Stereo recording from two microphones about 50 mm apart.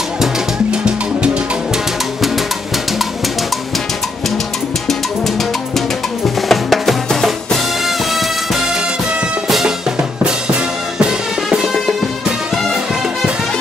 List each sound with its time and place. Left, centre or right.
0.7 s music: centre
6.2 s music: centre
11.0 s music: centre